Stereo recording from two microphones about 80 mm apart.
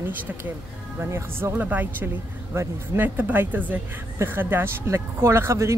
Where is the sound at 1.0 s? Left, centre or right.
Right.